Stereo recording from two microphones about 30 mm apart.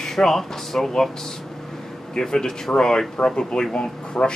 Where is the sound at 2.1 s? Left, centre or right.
Left.